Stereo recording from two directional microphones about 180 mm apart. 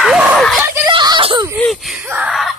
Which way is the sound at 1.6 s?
Centre (ahead or behind).